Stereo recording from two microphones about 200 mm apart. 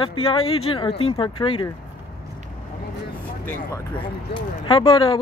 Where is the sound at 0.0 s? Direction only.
25° left (ahead or behind).